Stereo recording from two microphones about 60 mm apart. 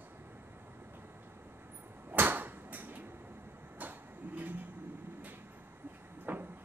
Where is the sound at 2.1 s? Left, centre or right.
Right.